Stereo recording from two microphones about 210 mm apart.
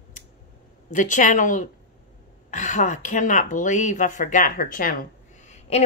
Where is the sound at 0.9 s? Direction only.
35° left (ahead or behind).